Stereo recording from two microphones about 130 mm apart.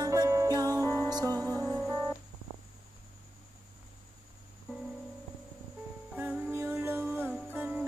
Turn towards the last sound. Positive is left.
turn(degrees=-15)  # may be behind; listen again after turning